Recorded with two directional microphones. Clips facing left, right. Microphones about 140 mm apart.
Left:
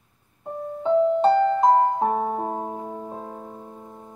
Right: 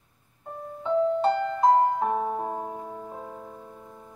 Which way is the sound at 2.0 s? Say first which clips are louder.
Left 3 dB; 35° left (ahead or behind).